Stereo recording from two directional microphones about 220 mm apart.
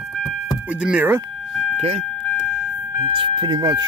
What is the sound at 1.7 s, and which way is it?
Vehicle, 30° right (ahead or behind).